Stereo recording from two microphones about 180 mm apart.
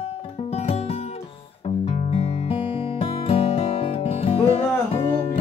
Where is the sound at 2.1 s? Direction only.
30° left (ahead or behind).